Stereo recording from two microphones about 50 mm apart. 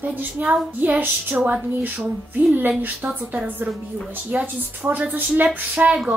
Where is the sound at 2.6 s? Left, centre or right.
Right.